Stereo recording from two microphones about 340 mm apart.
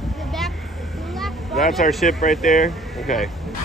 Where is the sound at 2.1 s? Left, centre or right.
Left.